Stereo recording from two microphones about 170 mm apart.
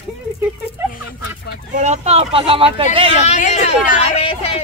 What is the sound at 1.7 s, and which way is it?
Speech, 45° right (ahead or behind).